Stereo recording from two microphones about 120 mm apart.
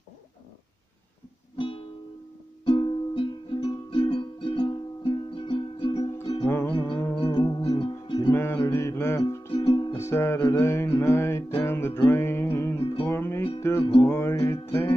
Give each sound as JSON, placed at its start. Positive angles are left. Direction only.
{"t": 1.6, "sound": "music", "side_deg": 50}
{"t": 8.3, "sound": "music", "side_deg": 20}
{"t": 8.5, "sound": "mantra", "side_deg": 25}
{"t": 9.9, "sound": "music", "side_deg": 20}
{"t": 10.5, "sound": "mantra", "side_deg": 25}
{"t": 11.0, "sound": "music", "side_deg": 20}
{"t": 12.1, "sound": "mantra", "side_deg": 20}
{"t": 12.5, "sound": "music", "side_deg": 25}